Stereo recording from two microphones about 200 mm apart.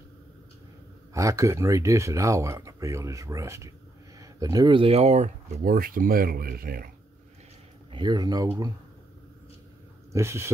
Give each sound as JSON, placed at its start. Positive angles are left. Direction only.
{"t": 1.1, "sound": "speech", "side_deg": -15}
{"t": 7.9, "sound": "speech", "side_deg": -20}
{"t": 10.1, "sound": "speech", "side_deg": -15}